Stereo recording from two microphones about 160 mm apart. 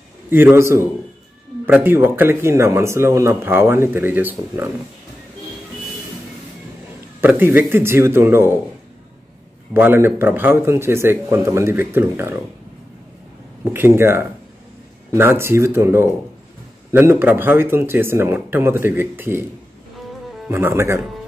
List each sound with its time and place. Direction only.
0.3 s speech: 15° right (ahead or behind)
7.2 s speech: 15° right (ahead or behind)
9.8 s speech: 15° right (ahead or behind)
13.7 s speech: 15° right (ahead or behind)
20.4 s speech: 15° right (ahead or behind)